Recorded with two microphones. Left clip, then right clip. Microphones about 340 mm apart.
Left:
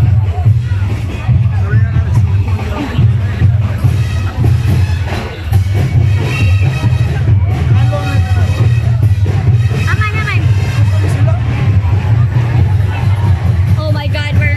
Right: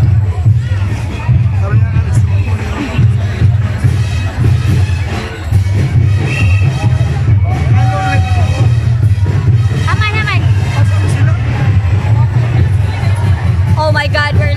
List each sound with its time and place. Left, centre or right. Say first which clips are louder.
9.8 s vehicle: right 3 dB; centre
13.7 s music: right 9 dB; right